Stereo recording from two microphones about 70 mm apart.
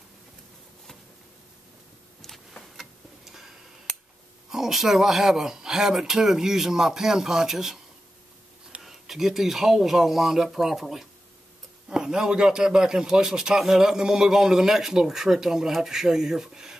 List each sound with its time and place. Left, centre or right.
2.2 s tick: centre
4.5 s speech: centre
8.8 s a man's voice: centre